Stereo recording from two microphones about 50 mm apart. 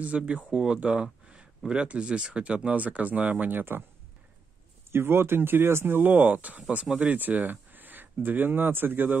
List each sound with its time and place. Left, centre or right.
0.0 s speech: right
0.7 s a sound: centre
1.7 s speech: right
4.9 s speech: right
6.1 s speech: right